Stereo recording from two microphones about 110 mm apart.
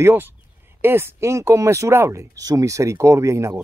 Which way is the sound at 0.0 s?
20° right (ahead or behind).